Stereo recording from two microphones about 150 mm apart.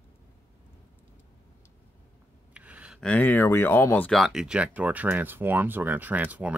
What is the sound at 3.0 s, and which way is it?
Speech, 10° left (ahead or behind).